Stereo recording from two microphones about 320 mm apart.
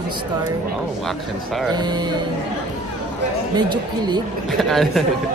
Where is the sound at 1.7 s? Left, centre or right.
Centre.